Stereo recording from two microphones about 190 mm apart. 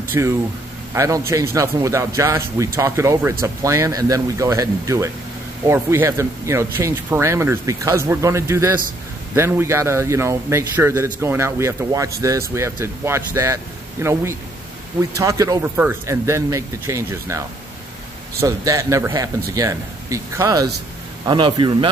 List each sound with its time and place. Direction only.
0.2 s speech: 15° right (ahead or behind)
18.4 s a man's voice: 15° right (ahead or behind)